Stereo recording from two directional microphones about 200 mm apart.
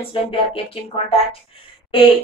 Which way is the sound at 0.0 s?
25° left (ahead or behind).